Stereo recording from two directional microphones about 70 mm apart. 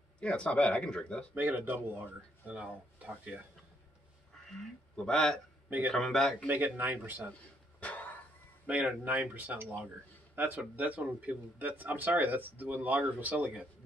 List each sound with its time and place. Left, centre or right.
0.2 s speech: centre
1.3 s speech: right
4.9 s speech: centre
6.4 s speech: right
7.8 s a sound: left
8.6 s speech: right